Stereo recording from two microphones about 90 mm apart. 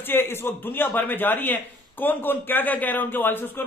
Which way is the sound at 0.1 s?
25° left (ahead or behind).